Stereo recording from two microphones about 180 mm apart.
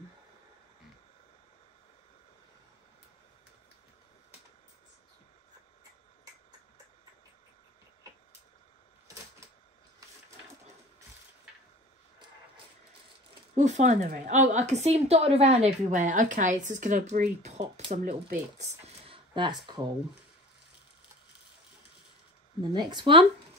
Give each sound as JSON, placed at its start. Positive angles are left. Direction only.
{"t": 13.6, "sound": "a woman's voice", "side_deg": -40}
{"t": 22.6, "sound": "speech", "side_deg": -25}